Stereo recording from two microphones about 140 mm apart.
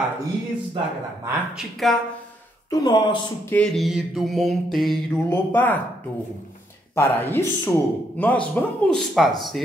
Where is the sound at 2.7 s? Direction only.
25° left (ahead or behind).